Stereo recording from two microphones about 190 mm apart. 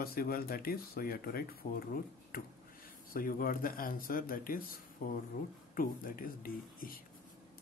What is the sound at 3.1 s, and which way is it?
Speech, 50° left (ahead or behind).